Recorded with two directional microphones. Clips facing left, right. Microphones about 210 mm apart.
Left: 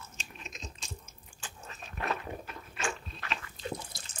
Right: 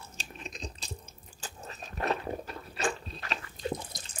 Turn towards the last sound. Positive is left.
turn(degrees=-20)  # may be behind; listen again after turning